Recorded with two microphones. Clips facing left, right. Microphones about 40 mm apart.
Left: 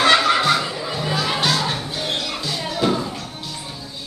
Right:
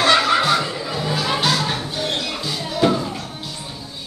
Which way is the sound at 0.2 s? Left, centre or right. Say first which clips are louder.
Even; centre.